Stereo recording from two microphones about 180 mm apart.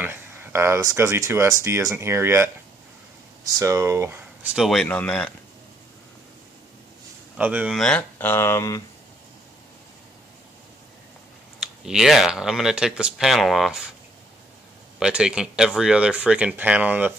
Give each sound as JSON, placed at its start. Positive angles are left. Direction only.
{"t": 0.0, "sound": "speech", "side_deg": -15}
{"t": 3.5, "sound": "speech", "side_deg": -15}
{"t": 4.6, "sound": "speech", "side_deg": 5}
{"t": 7.3, "sound": "speech", "side_deg": -5}
{"t": 11.6, "sound": "speech", "side_deg": -5}
{"t": 15.0, "sound": "speech", "side_deg": -5}